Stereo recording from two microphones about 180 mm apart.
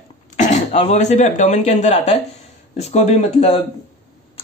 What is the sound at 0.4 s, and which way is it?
Speech, 40° left (ahead or behind).